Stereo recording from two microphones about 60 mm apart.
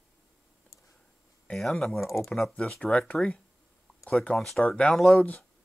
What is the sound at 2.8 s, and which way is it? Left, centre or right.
Speech, left.